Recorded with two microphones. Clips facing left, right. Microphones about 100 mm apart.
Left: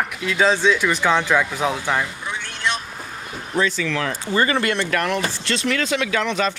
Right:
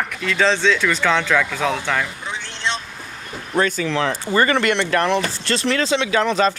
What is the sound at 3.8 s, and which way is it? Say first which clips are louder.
Speech: right 3 dB; 30° right (ahead or behind).